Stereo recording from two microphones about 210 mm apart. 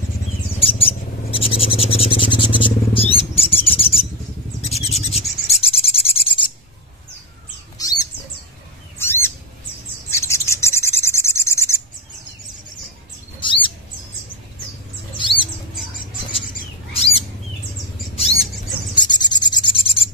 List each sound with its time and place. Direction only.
0.6 s owl: 25° left (ahead or behind)
4.6 s rub: 30° left (ahead or behind)
7.7 s a sound: 15° left (ahead or behind)
9.0 s bird: 10° left (ahead or behind)
10.1 s rub: 15° left (ahead or behind)
13.4 s a sound: 25° left (ahead or behind)
15.1 s bird: 25° left (ahead or behind)
16.9 s bird: 30° left (ahead or behind)
18.1 s rodents: 30° left (ahead or behind)
18.9 s a sound: 20° left (ahead or behind)